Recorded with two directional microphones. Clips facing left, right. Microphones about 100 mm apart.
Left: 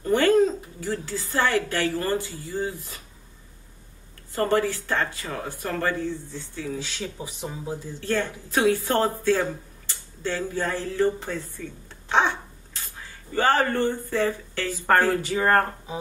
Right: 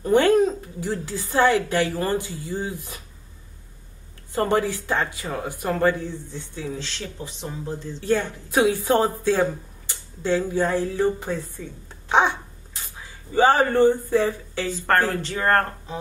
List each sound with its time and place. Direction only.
0.0 s speech: 20° right (ahead or behind)
4.3 s speech: 20° right (ahead or behind)
6.8 s speech: 10° left (ahead or behind)
8.0 s speech: 15° right (ahead or behind)
12.1 s a sound: 15° right (ahead or behind)
13.3 s speech: 15° right (ahead or behind)
14.7 s speech: 10° left (ahead or behind)